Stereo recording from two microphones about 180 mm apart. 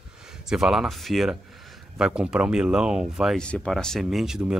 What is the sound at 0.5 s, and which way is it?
Speech, 5° right (ahead or behind).